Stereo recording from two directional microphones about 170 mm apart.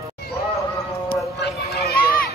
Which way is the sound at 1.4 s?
70° left (ahead or behind).